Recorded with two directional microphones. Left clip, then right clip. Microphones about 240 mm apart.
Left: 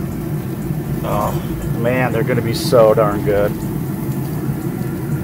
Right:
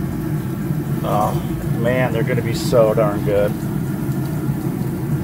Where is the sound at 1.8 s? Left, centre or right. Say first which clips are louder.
Left 2 dB; centre.